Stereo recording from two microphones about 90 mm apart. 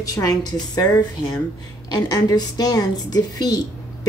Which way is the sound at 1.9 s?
45° left (ahead or behind).